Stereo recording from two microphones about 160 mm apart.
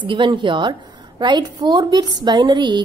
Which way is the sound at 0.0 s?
30° right (ahead or behind).